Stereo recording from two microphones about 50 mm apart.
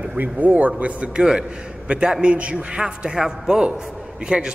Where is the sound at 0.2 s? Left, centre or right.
Right.